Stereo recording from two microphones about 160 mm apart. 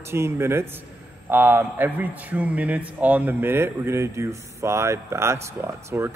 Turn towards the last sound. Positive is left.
turn(degrees=-15)  # may be behind; listen again after turning